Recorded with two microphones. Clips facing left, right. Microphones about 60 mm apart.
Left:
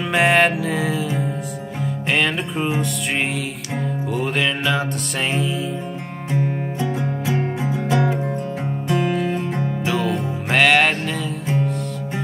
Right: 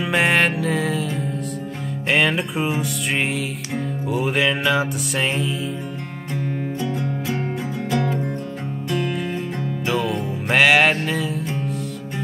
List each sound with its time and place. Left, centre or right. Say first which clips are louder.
0.0 s music: left 2 dB; centre
6.3 s music: left 3 dB; centre
9.1 s music: left 4 dB; centre